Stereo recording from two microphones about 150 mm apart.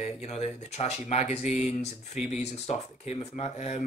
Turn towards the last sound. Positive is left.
turn(degrees=50)  # may be behind; listen again after turning